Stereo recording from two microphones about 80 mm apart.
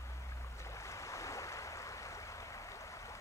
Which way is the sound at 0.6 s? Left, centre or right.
Left.